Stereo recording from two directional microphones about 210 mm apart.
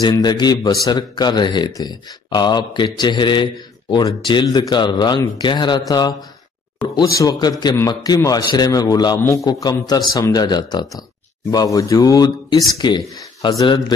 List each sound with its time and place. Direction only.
0.0 s a man's voice: 20° left (ahead or behind)